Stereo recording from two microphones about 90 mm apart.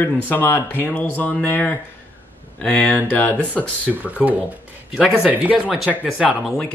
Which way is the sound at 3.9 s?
5° left (ahead or behind).